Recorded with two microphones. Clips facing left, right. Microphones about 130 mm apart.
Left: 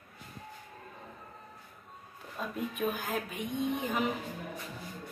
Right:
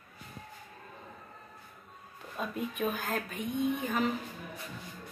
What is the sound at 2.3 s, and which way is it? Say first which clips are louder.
Speech: right 1 dB; centre (ahead or behind).